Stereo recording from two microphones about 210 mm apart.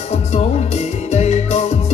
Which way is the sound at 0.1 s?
30° left (ahead or behind).